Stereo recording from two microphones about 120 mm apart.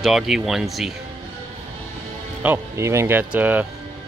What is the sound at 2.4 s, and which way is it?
Speech, 20° right (ahead or behind).